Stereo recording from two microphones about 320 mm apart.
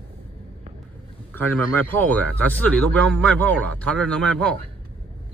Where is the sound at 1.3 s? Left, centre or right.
Centre.